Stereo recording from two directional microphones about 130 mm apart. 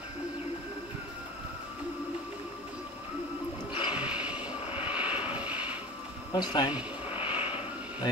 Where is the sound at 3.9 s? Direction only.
10° right (ahead or behind).